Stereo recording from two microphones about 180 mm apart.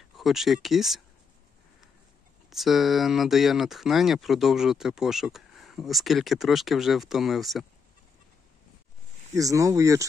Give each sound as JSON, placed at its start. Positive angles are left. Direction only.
{"t": 0.1, "sound": "speech", "side_deg": 0}
{"t": 2.5, "sound": "speech", "side_deg": 0}
{"t": 9.3, "sound": "speech", "side_deg": -20}